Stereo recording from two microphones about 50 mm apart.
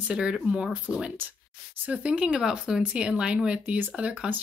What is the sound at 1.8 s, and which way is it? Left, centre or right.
Speech, right.